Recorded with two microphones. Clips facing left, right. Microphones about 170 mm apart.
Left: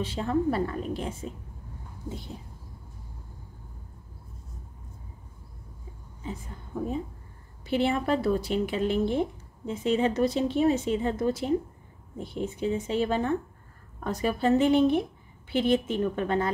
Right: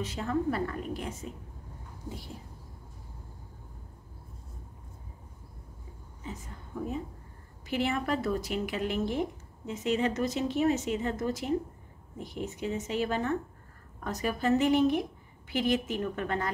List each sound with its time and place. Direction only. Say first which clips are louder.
0.0 s speech: left 4 dB; 30° left (ahead or behind)
7.6 s speech: left 5 dB; 30° left (ahead or behind)